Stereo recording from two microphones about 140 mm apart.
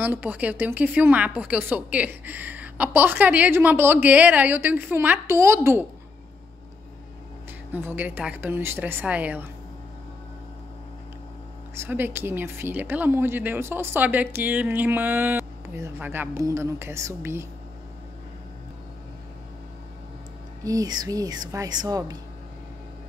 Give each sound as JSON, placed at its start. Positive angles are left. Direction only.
{"t": 0.0, "sound": "speech", "side_deg": -10}
{"t": 7.7, "sound": "speech", "side_deg": -15}
{"t": 11.7, "sound": "a woman's voice", "side_deg": -15}
{"t": 20.6, "sound": "a woman's voice", "side_deg": -25}